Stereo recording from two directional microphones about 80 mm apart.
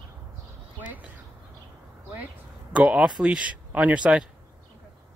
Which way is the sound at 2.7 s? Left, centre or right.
Centre.